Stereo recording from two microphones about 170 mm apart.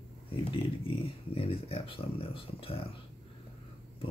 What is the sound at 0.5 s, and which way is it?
Speech, 35° left (ahead or behind).